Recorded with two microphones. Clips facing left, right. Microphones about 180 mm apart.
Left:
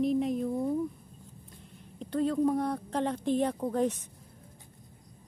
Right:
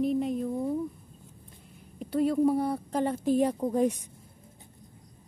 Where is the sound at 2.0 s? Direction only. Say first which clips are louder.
Right 3 dB; 10° right (ahead or behind).